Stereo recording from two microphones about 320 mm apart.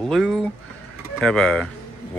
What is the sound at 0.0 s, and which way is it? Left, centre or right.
Speech, centre.